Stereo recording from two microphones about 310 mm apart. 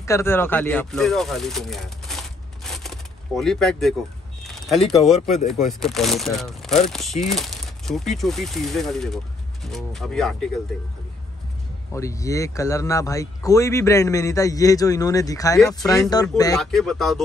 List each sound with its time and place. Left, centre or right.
0.0 s speech: centre
4.4 s a sound: centre
5.1 s speech: left
5.8 s speech: centre
11.9 s speech: centre
16.5 s speech: centre